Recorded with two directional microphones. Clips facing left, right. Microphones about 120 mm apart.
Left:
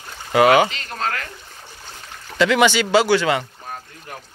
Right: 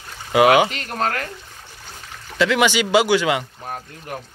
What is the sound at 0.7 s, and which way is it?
Speech, 45° right (ahead or behind).